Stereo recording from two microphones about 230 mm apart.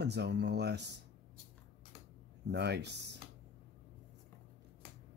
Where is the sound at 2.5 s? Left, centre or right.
Right.